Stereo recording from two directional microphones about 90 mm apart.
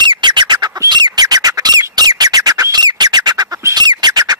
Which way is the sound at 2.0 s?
45° right (ahead or behind).